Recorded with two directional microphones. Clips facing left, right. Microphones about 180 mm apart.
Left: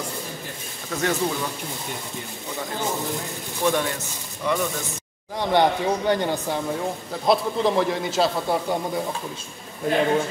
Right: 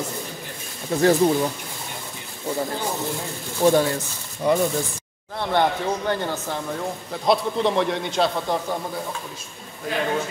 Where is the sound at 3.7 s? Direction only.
35° right (ahead or behind).